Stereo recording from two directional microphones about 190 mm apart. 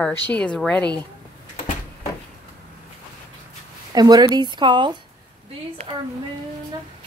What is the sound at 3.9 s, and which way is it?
Speech, 20° right (ahead or behind).